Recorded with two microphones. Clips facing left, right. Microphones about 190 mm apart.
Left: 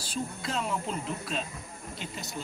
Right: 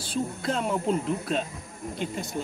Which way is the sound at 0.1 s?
55° right (ahead or behind).